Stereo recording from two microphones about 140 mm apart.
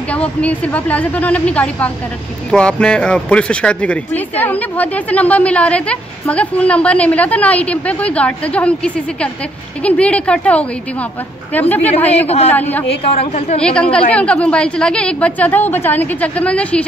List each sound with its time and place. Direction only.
0.1 s speech: 10° left (ahead or behind)
12.1 s a woman's voice: 50° left (ahead or behind)
12.4 s speech: 10° left (ahead or behind)
13.2 s a woman's voice: 55° left (ahead or behind)
13.7 s speech: 10° left (ahead or behind)